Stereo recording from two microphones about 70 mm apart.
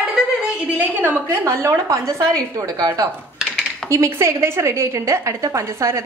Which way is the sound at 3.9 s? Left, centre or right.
Right.